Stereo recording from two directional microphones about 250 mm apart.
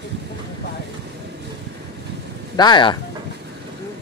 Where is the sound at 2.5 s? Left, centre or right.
Centre.